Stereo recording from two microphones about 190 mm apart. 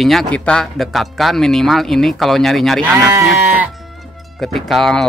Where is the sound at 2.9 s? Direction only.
10° right (ahead or behind).